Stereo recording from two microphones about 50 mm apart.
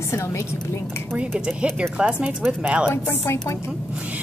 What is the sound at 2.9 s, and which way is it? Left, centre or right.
Speech, left.